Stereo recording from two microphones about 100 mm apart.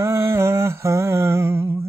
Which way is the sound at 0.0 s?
25° right (ahead or behind).